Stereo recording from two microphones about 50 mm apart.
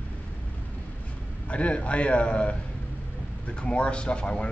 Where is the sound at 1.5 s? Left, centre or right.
Left.